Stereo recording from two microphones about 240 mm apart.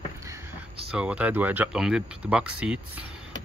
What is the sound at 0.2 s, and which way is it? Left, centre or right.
Speech, centre.